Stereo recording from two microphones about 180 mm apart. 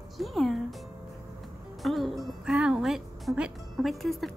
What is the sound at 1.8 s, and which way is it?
A woman's voice, centre (ahead or behind).